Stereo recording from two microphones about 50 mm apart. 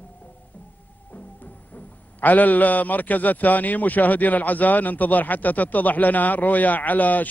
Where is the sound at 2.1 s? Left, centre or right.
Left.